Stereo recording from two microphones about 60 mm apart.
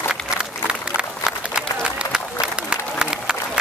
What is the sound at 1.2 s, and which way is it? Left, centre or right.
Run, centre.